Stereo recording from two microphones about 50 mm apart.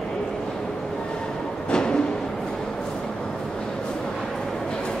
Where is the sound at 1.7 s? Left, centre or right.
Centre.